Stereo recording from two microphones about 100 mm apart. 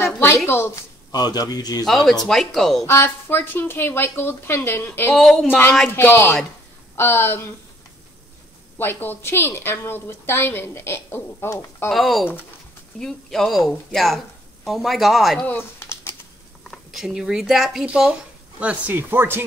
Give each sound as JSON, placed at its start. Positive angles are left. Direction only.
{"t": 0.0, "sound": "a sound", "side_deg": 25}
{"t": 0.5, "sound": "a woman's voice", "side_deg": 25}
{"t": 1.1, "sound": "a man's voice", "side_deg": 40}
{"t": 2.2, "sound": "speech", "side_deg": 5}
{"t": 2.8, "sound": "a woman's voice", "side_deg": 25}
{"t": 5.1, "sound": "speech", "side_deg": 5}
{"t": 5.5, "sound": "a woman's voice", "side_deg": 15}
{"t": 8.7, "sound": "a woman's voice", "side_deg": 20}
{"t": 11.9, "sound": "speech", "side_deg": 0}
{"t": 15.4, "sound": "a sound", "side_deg": 25}
{"t": 16.7, "sound": "speech", "side_deg": 0}
{"t": 18.6, "sound": "speech", "side_deg": -15}